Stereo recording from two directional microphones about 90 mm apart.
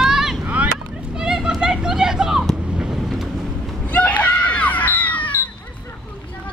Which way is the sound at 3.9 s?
15° left (ahead or behind).